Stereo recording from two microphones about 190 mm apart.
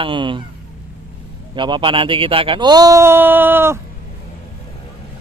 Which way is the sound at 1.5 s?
25° right (ahead or behind).